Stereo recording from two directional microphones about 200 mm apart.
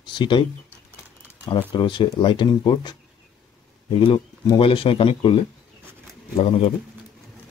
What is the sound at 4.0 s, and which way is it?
Speech, 25° left (ahead or behind).